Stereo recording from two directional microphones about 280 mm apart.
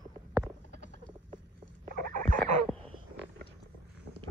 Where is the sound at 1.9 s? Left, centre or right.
Right.